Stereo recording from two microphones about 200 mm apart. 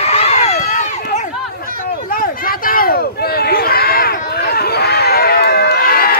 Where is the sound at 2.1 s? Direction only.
45° left (ahead or behind).